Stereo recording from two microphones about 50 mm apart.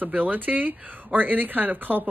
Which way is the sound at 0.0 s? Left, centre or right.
Right.